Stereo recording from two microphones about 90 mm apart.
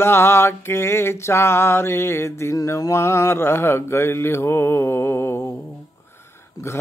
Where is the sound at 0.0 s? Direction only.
25° left (ahead or behind).